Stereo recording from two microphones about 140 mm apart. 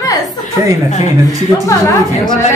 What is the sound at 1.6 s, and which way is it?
Speech, 25° left (ahead or behind).